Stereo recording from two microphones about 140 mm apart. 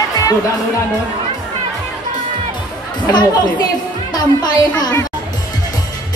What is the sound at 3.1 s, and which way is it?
A child's voice, 30° left (ahead or behind).